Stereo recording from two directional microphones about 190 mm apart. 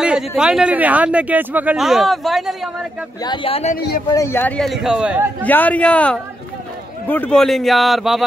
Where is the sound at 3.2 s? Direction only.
25° left (ahead or behind).